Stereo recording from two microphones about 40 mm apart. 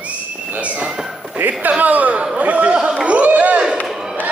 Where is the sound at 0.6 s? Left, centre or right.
Right.